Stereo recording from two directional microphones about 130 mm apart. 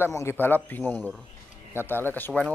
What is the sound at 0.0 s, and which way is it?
A man's voice, 20° left (ahead or behind).